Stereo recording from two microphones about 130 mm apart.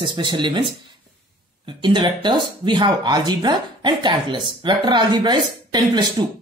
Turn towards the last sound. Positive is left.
turn(degrees=-35)  # may be behind; listen again after turning